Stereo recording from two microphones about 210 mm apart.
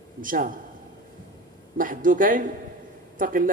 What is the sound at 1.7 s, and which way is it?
A woman's voice, 40° right (ahead or behind).